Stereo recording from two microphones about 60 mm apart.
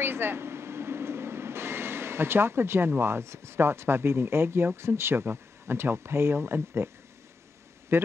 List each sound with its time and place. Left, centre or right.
0.0 s train: right
3.0 s speech: right
7.9 s speech: right